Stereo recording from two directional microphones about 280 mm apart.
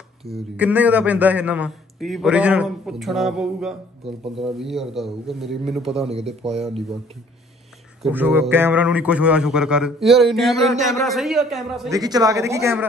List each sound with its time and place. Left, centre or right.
0.2 s a man's voice: centre
6.0 s speech: right
8.0 s a man's voice: centre
11.9 s speech: centre